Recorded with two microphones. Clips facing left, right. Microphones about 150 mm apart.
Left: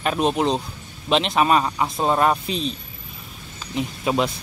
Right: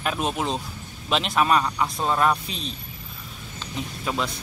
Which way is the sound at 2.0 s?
35° left (ahead or behind).